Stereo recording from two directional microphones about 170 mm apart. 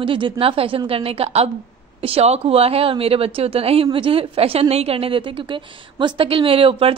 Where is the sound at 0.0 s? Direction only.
30° right (ahead or behind).